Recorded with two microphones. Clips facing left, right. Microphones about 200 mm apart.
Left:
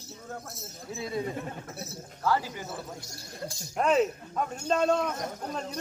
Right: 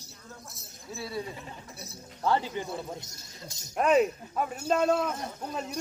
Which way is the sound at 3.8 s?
5° right (ahead or behind).